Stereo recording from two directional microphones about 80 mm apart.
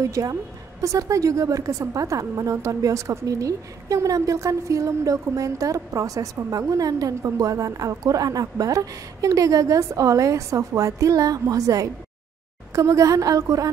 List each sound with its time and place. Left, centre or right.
0.0 s a woman's voice: right